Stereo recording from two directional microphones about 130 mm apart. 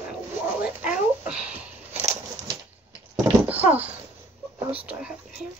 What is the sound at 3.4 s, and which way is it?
Dog, 15° right (ahead or behind).